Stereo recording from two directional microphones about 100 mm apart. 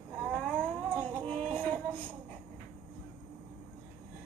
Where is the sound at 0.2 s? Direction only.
10° left (ahead or behind).